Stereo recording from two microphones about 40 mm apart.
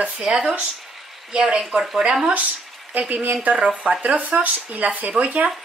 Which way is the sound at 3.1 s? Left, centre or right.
Right.